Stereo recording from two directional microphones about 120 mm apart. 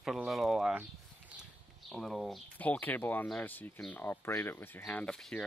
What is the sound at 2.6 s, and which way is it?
Speech, 15° left (ahead or behind).